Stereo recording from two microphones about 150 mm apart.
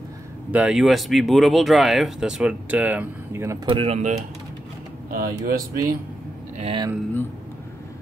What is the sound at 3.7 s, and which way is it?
Speech, 35° right (ahead or behind).